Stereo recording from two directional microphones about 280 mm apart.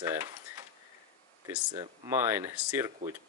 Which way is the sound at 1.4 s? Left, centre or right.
Centre.